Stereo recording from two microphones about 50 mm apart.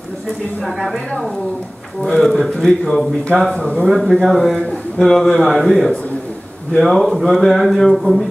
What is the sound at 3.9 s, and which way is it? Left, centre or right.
A man's voice, centre.